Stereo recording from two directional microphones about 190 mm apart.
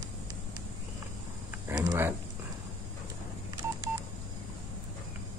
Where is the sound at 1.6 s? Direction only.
15° right (ahead or behind).